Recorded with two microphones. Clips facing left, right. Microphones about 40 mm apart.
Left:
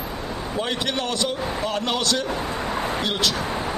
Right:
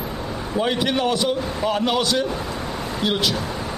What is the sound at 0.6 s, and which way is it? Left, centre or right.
A man's voice, centre.